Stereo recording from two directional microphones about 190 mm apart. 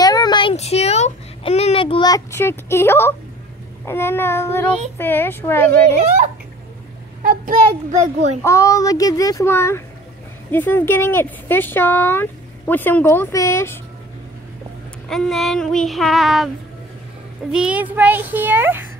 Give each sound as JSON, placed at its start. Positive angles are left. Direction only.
{"t": 0.0, "sound": "a sound", "side_deg": 20}
{"t": 3.8, "sound": "speech", "side_deg": 10}
{"t": 7.2, "sound": "a child's voice", "side_deg": -45}
{"t": 8.4, "sound": "speech", "side_deg": 15}
{"t": 15.0, "sound": "child singing", "side_deg": 0}
{"t": 17.5, "sound": "a child's voice", "side_deg": -5}